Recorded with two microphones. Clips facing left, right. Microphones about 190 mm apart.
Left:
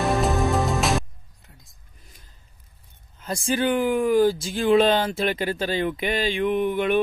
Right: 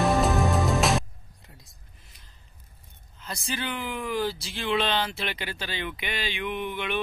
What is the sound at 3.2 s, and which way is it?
Speech, 50° left (ahead or behind).